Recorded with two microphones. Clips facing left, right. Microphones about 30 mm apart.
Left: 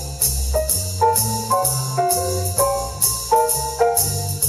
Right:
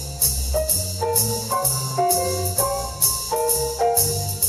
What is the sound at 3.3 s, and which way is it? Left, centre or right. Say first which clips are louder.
Music: left 5 dB; centre.